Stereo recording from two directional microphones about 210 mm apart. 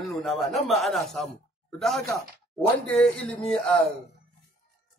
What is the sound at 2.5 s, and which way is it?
A man's voice, 5° left (ahead or behind).